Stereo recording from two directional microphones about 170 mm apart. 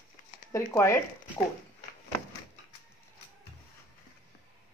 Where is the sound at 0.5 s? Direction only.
15° left (ahead or behind).